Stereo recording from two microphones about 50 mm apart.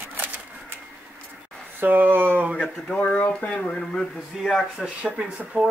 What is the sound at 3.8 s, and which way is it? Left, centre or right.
Speech, centre.